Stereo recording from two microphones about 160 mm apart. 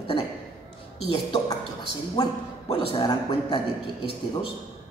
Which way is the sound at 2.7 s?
35° left (ahead or behind).